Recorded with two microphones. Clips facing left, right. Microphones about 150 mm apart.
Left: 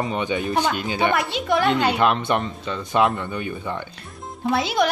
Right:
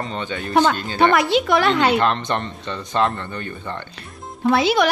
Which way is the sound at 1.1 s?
90° right.